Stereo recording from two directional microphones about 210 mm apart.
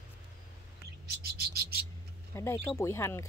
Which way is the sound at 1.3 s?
50° right (ahead or behind).